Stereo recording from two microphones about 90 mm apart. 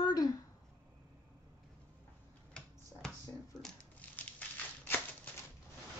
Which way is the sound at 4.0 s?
15° left (ahead or behind).